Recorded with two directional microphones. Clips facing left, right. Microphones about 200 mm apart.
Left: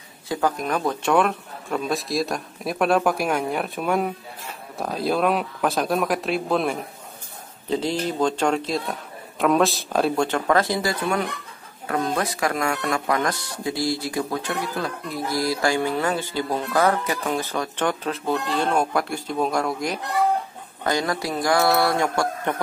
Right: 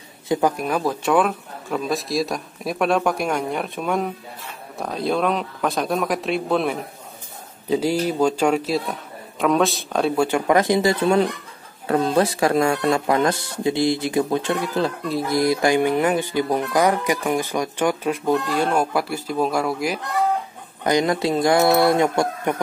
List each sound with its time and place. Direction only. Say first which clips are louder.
0.3 s speech: right 3 dB; 15° right (ahead or behind)
7.6 s speech: right 4 dB; 10° right (ahead or behind)
10.2 s speech: right 3 dB; 15° right (ahead or behind)
20.8 s speech: right 5 dB; 20° right (ahead or behind)